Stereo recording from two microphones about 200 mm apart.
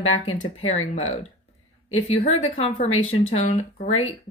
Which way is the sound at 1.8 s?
90° left.